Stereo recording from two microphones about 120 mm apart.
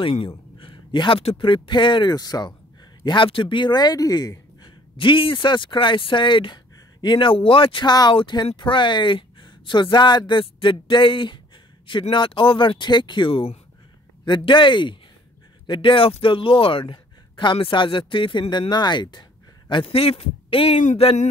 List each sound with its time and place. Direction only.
0.0 s a man's voice: 45° left (ahead or behind)
3.1 s speech: 45° left (ahead or behind)
4.9 s a man's voice: 45° left (ahead or behind)
20.8 s a sound: 60° left (ahead or behind)